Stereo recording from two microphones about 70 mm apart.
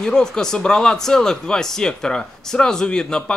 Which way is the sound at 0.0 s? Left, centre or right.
Centre.